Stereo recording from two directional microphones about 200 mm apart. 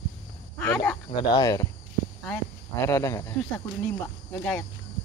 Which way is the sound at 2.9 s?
15° left (ahead or behind).